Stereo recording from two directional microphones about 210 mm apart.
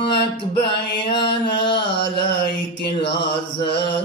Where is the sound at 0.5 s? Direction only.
25° left (ahead or behind).